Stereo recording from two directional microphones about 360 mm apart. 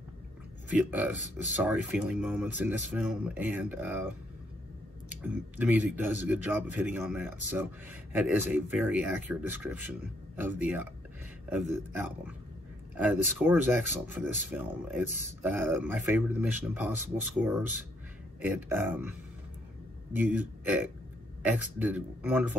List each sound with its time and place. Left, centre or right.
0.7 s speech: centre
5.1 s speech: centre
20.2 s speech: centre